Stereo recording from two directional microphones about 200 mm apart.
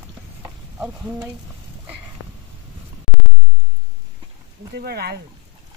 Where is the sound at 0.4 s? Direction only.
10° right (ahead or behind).